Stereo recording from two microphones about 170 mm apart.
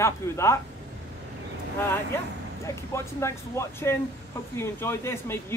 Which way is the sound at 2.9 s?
15° left (ahead or behind).